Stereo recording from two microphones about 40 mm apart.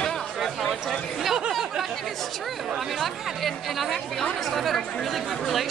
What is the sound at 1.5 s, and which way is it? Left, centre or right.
Chatter, centre.